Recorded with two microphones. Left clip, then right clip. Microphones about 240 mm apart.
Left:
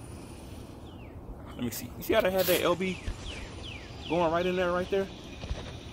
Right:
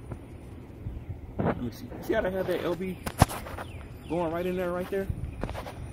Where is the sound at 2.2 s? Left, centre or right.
Centre.